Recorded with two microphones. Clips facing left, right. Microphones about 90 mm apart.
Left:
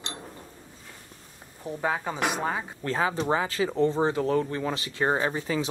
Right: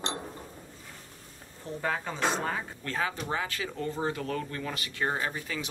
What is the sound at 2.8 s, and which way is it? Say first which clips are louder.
Speech: left 7 dB; 30° left (ahead or behind).